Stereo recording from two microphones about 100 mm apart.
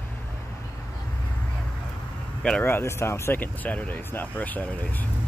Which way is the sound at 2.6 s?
25° left (ahead or behind).